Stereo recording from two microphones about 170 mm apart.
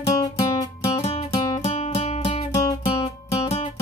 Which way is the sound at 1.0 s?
35° left (ahead or behind).